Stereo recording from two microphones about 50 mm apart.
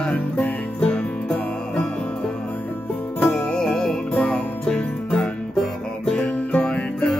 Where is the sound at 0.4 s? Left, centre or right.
Left.